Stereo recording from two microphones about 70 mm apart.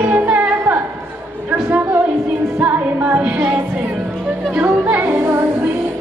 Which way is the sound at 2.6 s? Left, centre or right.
Right.